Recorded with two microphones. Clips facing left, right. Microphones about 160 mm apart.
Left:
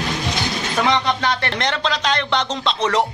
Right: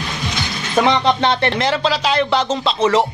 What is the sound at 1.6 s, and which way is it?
Speech, 5° right (ahead or behind).